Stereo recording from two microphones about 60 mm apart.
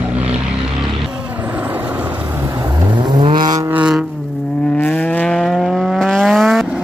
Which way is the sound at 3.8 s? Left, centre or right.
Centre.